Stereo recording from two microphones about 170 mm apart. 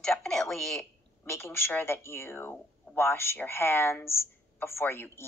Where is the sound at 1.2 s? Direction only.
15° left (ahead or behind).